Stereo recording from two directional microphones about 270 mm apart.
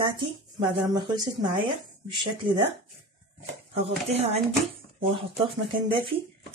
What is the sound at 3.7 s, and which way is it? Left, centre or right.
Speech, right.